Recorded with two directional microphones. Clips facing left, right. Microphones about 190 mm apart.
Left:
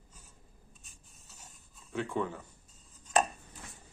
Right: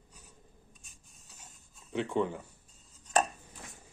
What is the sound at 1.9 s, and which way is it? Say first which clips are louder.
Speech: right 3 dB; 20° right (ahead or behind).